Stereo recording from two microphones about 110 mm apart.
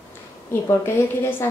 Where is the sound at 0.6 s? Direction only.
20° left (ahead or behind).